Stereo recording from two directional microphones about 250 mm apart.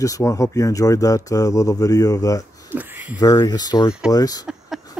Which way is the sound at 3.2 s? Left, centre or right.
Centre.